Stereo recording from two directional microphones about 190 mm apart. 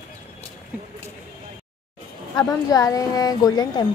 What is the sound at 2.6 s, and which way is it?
Speech, 20° left (ahead or behind).